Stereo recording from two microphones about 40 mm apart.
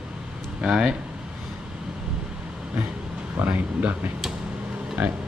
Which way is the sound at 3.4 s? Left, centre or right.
Right.